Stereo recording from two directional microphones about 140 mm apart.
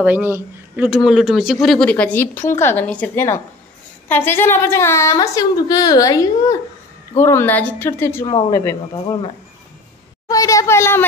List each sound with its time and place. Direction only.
0.0 s a man's voice: 15° right (ahead or behind); by 8.7 s 20° left (ahead or behind)
10.2 s a woman's voice: 25° left (ahead or behind)